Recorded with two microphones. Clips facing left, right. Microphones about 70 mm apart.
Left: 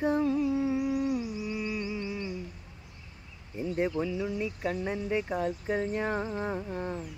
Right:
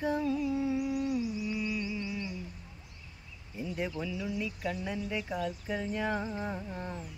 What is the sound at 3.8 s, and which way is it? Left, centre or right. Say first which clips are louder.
Speech: left 7 dB; left.